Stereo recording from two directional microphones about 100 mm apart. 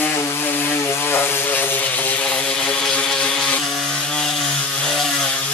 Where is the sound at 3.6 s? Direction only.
Centre (ahead or behind).